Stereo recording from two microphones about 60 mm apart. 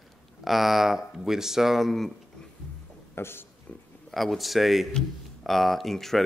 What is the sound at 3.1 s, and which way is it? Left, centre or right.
Speech, left.